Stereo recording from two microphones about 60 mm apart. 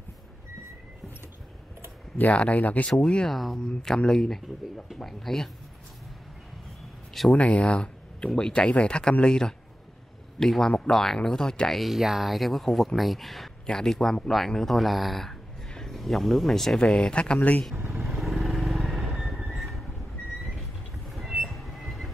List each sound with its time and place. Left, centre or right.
2.1 s speech: left
3.3 s speech: centre
7.3 s speech: left
11.8 s speech: centre; by 17.6 s left
18.0 s vehicle: centre
19.5 s a sound: centre
21.1 s train: centre